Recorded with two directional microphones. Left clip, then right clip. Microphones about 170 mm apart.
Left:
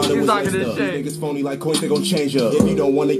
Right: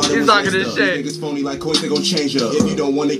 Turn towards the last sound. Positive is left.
turn(degrees=45)  # may be behind; listen again after turning